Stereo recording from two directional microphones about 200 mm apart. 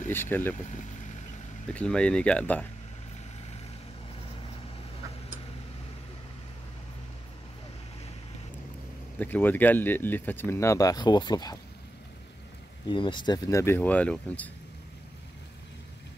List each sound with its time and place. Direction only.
0.1 s speech: 10° left (ahead or behind)
0.6 s speech: 35° left (ahead or behind)
1.7 s speech: 5° left (ahead or behind)
9.2 s speech: 10° left (ahead or behind)
12.8 s speech: 25° left (ahead or behind); by 14.5 s 5° left (ahead or behind)